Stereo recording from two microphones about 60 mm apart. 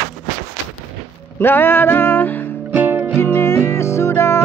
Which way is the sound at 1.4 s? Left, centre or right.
Left.